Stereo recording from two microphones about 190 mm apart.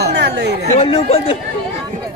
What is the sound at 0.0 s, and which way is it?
Chatter, 60° right (ahead or behind).